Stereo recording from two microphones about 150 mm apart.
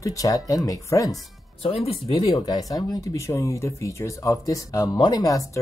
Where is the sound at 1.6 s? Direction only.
40° left (ahead or behind).